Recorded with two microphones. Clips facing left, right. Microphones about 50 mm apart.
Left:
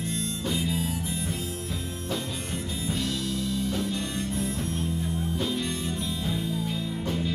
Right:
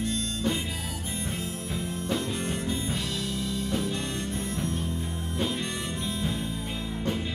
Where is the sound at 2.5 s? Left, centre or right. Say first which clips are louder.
Right 1 dB; centre.